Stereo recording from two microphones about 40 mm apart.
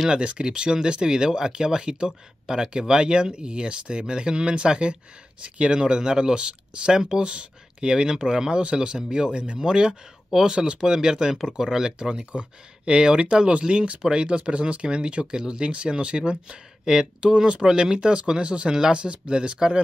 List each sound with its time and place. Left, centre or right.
0.1 s speech: right
7.2 s speech: right